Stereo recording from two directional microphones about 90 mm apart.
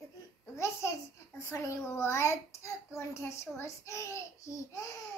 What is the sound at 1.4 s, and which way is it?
A child's voice, 30° left (ahead or behind).